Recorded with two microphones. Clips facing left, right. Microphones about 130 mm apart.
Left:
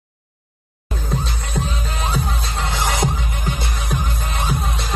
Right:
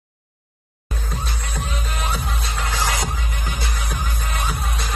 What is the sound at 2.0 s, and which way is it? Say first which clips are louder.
Music: left 4 dB; 25° left (ahead or behind).